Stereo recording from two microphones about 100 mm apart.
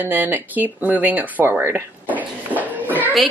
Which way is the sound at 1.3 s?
20° right (ahead or behind).